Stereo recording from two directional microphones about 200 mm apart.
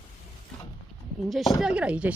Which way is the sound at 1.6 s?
5° right (ahead or behind).